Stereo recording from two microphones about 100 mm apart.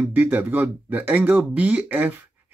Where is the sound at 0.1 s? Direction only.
20° right (ahead or behind).